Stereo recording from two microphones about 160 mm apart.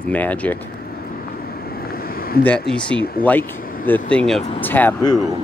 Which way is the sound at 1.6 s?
70° left (ahead or behind).